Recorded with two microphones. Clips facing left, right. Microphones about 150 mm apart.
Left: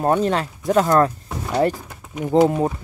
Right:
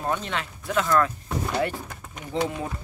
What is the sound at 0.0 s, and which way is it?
Speech, 45° left (ahead or behind).